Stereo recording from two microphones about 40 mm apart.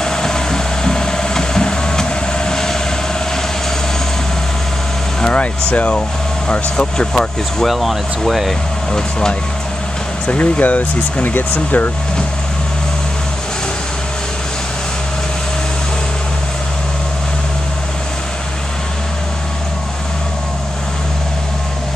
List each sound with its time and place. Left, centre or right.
0.0 s a sound: centre
5.2 s vehicle: left
5.7 s speech: left
6.5 s speech: left
7.6 s speech: centre
10.2 s speech: left